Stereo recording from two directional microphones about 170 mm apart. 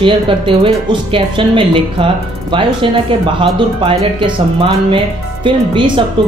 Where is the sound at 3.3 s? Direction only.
30° right (ahead or behind).